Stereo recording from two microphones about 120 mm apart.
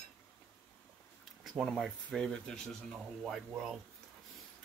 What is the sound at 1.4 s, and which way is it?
Speech, centre (ahead or behind).